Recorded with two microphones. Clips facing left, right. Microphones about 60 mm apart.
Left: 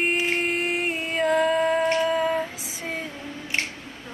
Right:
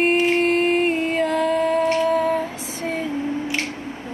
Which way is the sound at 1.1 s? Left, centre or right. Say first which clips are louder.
Left 4 dB; centre.